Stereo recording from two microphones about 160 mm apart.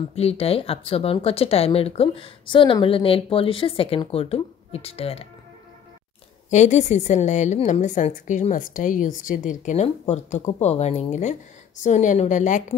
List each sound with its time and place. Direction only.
0.1 s speech: 40° left (ahead or behind)
6.5 s a woman's voice: 45° left (ahead or behind)